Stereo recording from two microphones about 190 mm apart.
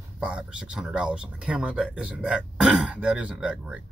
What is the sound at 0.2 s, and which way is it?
Speech, 5° right (ahead or behind).